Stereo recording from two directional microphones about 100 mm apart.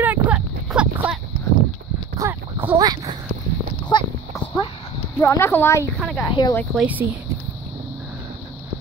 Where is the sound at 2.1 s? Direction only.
35° right (ahead or behind).